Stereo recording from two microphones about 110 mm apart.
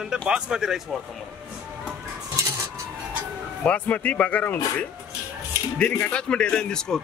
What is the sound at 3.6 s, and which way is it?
Speech, 15° left (ahead or behind).